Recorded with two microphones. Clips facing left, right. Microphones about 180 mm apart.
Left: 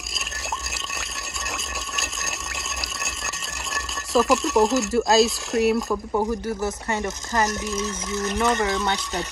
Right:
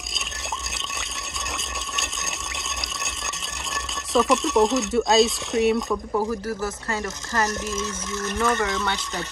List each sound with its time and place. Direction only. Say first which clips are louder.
3.7 s speech: left 1 dB; centre (ahead or behind)
6.1 s speech: left 2 dB; 20° left (ahead or behind)